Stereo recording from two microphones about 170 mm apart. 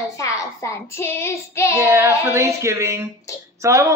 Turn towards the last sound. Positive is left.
turn(degrees=-20)  # may be behind; listen again after turning